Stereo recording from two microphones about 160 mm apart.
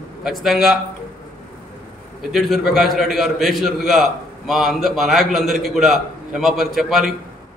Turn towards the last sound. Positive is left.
turn(degrees=0)  # may be behind; listen again after turning